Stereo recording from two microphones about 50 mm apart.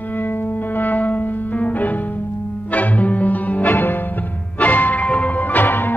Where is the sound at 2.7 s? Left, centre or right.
Left.